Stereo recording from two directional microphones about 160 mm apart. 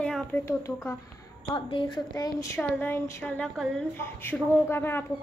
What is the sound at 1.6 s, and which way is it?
A woman's voice, 35° left (ahead or behind).